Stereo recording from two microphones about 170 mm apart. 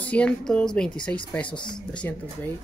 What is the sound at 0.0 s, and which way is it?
Speech, 5° left (ahead or behind).